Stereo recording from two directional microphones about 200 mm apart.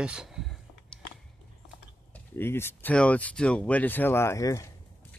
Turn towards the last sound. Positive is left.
turn(degrees=15)  # may be behind; listen again after turning